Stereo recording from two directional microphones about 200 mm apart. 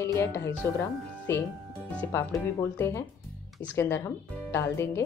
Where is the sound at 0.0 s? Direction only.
15° left (ahead or behind).